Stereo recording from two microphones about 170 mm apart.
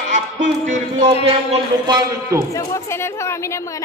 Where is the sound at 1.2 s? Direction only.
35° right (ahead or behind).